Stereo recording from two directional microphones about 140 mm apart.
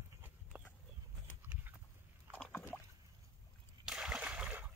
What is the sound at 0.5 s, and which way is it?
Horse, 15° right (ahead or behind).